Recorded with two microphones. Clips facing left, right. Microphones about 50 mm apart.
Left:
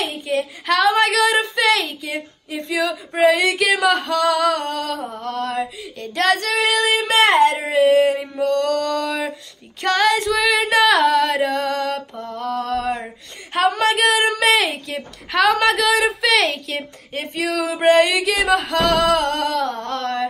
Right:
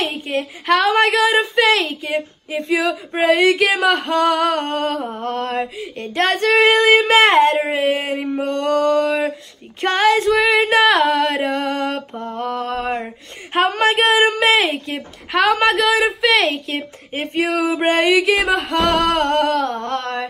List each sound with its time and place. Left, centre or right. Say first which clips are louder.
1.0 s a woman's voice: right 2 dB; centre
1.5 s female singing: right 3 dB; right
3.7 s male singing: right 1 dB; right
7.9 s female singing: left 5 dB; right
11.5 s male singing: right 1 dB; right
14.9 s a woman's voice: right 2 dB; centre
17.1 s male singing: right 3 dB; right
17.9 s a woman's voice: right 2 dB; centre
18.2 s female singing: right 1 dB; right
18.7 s male singing: even; right